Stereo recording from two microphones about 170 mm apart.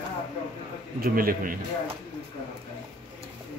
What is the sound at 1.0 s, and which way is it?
Cutlery, 60° right (ahead or behind).